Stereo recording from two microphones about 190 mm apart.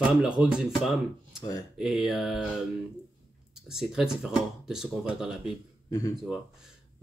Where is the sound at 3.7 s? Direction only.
Centre (ahead or behind).